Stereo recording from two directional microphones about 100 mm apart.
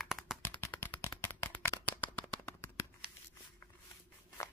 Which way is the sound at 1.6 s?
20° left (ahead or behind).